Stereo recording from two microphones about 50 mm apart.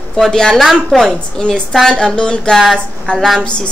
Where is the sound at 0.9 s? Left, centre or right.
Centre.